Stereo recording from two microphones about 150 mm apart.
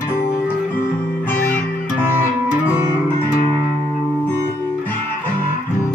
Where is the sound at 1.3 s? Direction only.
15° left (ahead or behind).